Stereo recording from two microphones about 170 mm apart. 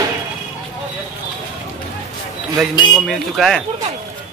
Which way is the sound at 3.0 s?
Centre (ahead or behind).